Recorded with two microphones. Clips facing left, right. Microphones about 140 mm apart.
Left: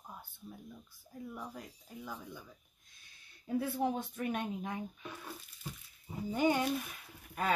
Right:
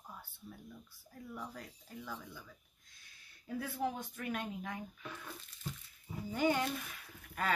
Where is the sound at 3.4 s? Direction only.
25° left (ahead or behind).